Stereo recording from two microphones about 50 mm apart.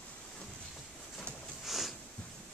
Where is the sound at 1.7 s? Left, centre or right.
Centre.